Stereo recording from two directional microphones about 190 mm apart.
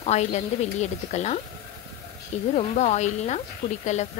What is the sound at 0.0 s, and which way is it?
A woman's voice, 35° left (ahead or behind).